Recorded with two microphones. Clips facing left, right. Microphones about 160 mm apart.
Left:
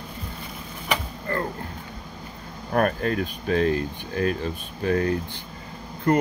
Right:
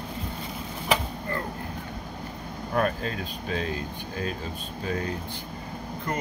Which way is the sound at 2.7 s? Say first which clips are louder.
Left 4 dB; 55° left (ahead or behind).